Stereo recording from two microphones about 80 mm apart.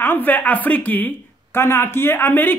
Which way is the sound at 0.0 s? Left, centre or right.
Left.